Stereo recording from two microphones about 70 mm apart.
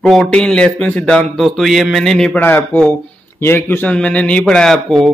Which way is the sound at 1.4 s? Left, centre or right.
Centre.